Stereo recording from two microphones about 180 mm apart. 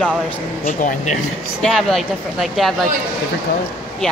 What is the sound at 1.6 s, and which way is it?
Speech, centre (ahead or behind).